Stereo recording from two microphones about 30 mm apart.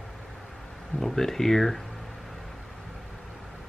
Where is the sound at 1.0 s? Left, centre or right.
Centre.